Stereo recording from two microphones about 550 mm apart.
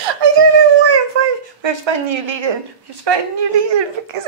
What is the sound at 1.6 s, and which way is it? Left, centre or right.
A woman's voice, right.